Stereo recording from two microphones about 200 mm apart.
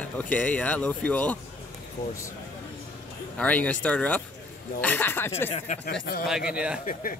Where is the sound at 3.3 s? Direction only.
5° left (ahead or behind).